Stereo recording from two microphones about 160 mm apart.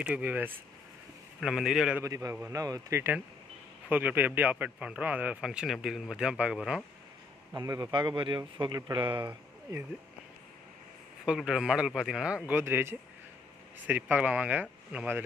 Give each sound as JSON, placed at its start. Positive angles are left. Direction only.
{"t": 0.0, "sound": "a man's voice", "side_deg": -10}
{"t": 2.0, "sound": "a man's voice", "side_deg": -20}
{"t": 7.5, "sound": "speech", "side_deg": -20}
{"t": 9.3, "sound": "a sound", "side_deg": -15}
{"t": 11.2, "sound": "a man's voice", "side_deg": -5}